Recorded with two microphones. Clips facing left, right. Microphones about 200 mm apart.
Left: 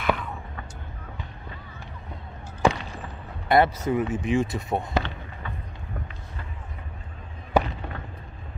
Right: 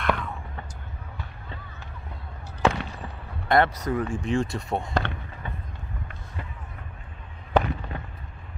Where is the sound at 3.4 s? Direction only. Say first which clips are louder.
Left 1 dB; 5° left (ahead or behind).